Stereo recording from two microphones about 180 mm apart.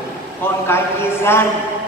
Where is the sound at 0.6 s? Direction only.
15° left (ahead or behind).